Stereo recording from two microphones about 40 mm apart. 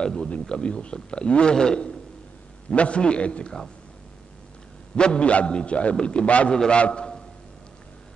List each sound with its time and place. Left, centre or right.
0.0 s a man's voice: centre
2.7 s a man's voice: left
4.9 s a man's voice: left